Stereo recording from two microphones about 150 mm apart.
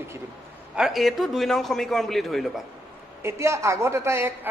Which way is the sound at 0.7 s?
Centre (ahead or behind).